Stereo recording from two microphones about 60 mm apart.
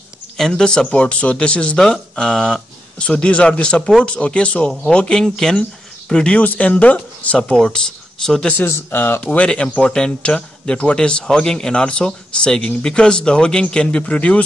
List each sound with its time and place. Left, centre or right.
0.4 s a man's voice: centre
6.4 s a man's voice: left; by 8.5 s centre
8.5 s speech: left
9.2 s a man's voice: centre